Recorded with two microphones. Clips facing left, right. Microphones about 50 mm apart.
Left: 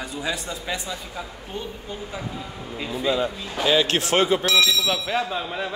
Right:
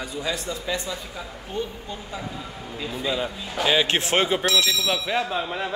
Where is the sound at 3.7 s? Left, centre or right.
Right.